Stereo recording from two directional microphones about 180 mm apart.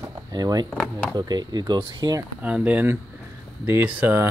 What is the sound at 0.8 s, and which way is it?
Speech, 5° left (ahead or behind).